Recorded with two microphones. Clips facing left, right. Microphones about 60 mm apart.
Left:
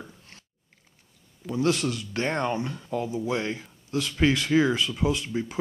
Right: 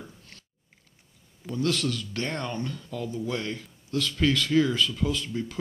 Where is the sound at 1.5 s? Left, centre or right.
Centre.